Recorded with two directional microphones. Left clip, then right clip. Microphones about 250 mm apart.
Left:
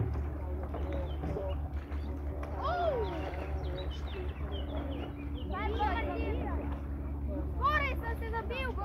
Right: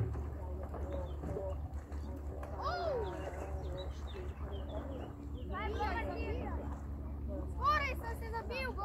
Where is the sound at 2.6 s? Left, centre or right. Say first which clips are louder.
Left 6 dB; right.